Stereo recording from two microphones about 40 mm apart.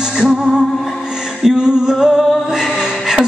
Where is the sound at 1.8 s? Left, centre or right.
Centre.